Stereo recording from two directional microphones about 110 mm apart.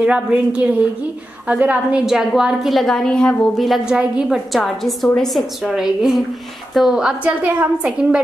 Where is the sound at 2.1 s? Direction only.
5° right (ahead or behind).